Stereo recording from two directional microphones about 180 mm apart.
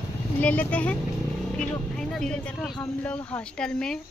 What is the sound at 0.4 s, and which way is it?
Speech, 10° left (ahead or behind).